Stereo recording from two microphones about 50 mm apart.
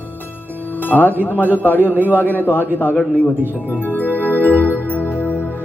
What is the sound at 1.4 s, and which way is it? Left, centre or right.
Music, left.